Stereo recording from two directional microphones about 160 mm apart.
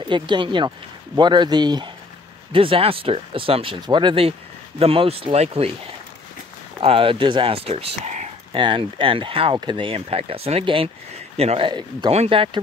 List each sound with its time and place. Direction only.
0.0 s speech: 30° right (ahead or behind)
6.8 s speech: 35° right (ahead or behind)
8.5 s speech: 30° right (ahead or behind)